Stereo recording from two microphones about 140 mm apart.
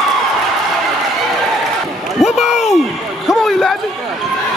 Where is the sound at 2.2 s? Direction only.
Centre (ahead or behind).